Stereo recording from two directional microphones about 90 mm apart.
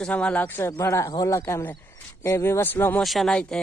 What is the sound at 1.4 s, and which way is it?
Speech, 25° left (ahead or behind).